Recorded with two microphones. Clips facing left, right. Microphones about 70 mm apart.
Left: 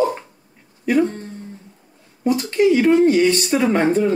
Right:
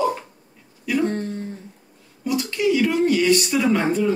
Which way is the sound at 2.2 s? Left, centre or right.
Left.